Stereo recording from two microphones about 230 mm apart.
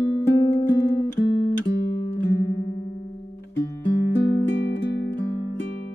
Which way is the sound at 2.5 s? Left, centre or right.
Left.